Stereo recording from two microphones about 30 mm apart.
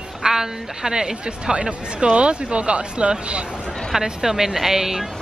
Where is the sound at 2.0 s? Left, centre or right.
Right.